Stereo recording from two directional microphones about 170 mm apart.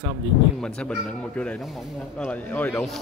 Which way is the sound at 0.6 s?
5° left (ahead or behind).